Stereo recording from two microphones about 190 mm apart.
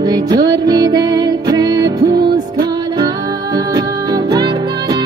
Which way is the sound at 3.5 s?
20° right (ahead or behind).